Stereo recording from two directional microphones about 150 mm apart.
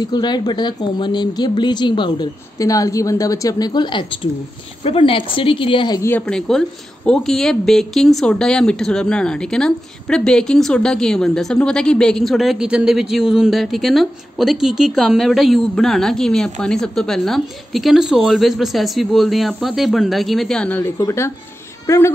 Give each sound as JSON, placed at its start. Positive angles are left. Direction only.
{"t": 0.0, "sound": "a woman's voice", "side_deg": 30}
{"t": 5.9, "sound": "speech", "side_deg": 15}
{"t": 21.0, "sound": "speech", "side_deg": 20}